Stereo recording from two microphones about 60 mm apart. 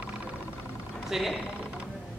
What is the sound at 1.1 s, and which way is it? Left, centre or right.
Speech, centre.